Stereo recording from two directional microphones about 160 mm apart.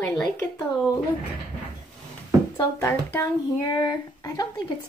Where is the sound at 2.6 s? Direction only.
15° left (ahead or behind).